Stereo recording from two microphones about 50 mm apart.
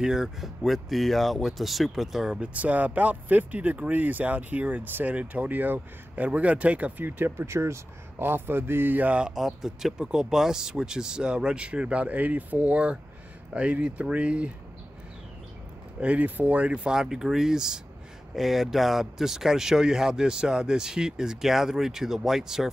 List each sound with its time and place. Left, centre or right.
0.0 s speech: centre
2.4 s speech: right
8.2 s speech: right
9.3 s speech: centre; by 12.6 s right
12.6 s speech: right
16.0 s speech: right
16.9 s speech: centre